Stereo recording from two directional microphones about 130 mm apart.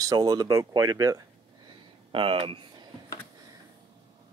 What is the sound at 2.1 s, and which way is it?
Speech, 45° right (ahead or behind).